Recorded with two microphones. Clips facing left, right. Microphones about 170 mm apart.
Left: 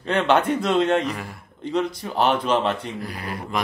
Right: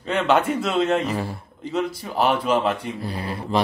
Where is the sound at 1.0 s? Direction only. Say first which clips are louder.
Right 3 dB; 30° right (ahead or behind).